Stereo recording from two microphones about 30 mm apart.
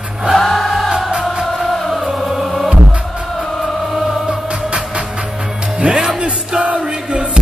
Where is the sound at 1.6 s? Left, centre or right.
Centre.